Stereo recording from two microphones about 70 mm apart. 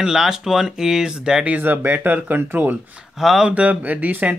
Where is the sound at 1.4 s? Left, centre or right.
Right.